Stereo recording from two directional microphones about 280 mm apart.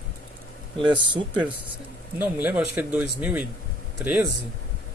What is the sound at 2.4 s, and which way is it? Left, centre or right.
Speech, centre.